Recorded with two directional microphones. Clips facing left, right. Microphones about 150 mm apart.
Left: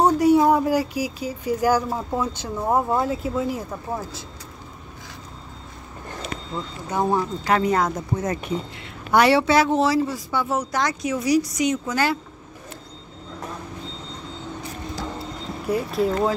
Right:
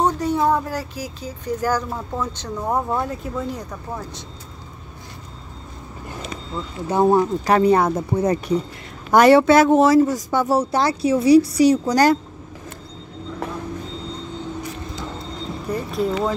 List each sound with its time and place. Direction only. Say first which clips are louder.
0.0 s speech: left 3 dB; 10° left (ahead or behind)
6.5 s speech: right 1 dB; 20° left (ahead or behind)
6.9 s speech: right 6 dB; 30° right (ahead or behind)
9.1 s speech: right 5 dB; 45° right (ahead or behind)
10.6 s speech: right 5 dB; 30° right (ahead or behind)
15.7 s speech: left 1 dB; centre (ahead or behind)